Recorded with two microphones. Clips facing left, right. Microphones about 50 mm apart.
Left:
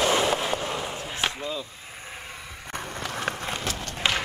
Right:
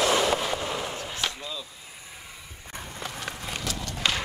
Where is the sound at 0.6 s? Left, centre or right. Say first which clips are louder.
Left 1 dB; centre.